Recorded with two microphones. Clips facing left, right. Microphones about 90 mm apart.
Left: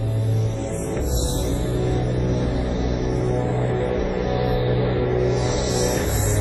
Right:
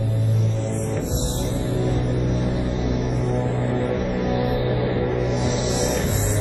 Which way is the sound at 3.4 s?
20° left (ahead or behind).